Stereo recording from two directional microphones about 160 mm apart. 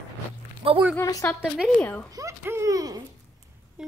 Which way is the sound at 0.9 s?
20° left (ahead or behind).